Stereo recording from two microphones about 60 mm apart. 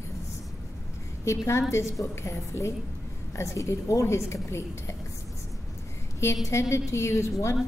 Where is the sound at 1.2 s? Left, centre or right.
Left.